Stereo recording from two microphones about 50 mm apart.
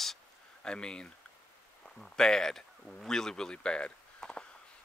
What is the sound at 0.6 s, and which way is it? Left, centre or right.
Speech, centre.